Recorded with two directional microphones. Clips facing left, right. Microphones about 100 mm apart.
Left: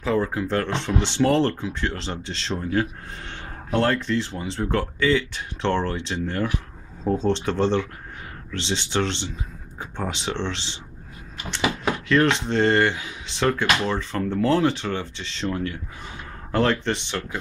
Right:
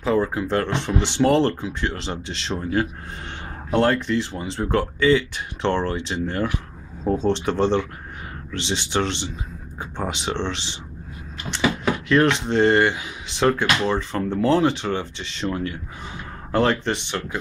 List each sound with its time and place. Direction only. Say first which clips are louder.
0.0 s speech: right 2 dB; 15° right (ahead or behind)
12.1 s speech: right 1 dB; 15° right (ahead or behind)